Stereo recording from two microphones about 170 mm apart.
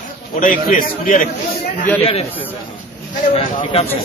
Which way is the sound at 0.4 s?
55° left (ahead or behind).